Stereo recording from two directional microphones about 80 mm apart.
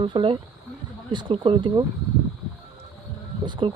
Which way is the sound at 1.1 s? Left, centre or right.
Right.